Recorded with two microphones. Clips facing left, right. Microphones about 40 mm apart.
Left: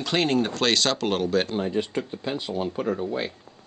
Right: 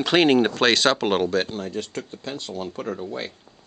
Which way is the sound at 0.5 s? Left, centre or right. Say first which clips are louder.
Right 4 dB; centre.